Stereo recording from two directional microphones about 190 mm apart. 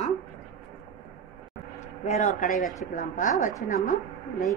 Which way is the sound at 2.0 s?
35° left (ahead or behind).